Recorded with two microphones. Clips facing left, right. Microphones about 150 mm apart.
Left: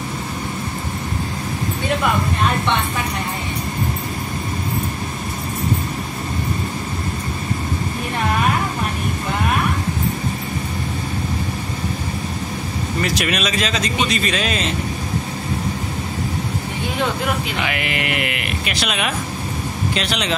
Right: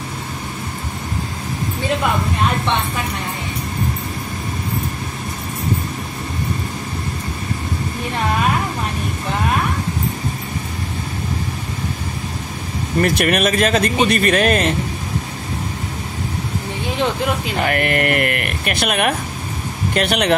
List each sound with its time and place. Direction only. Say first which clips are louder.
13.0 s speech: right 6 dB; 55° right (ahead or behind)
17.6 s speech: right 5 dB; 45° right (ahead or behind)